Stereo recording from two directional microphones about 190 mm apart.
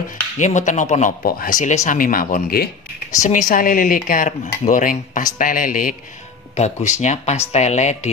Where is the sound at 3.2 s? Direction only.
40° left (ahead or behind).